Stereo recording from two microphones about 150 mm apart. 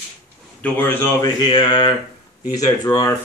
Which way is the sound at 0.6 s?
15° left (ahead or behind).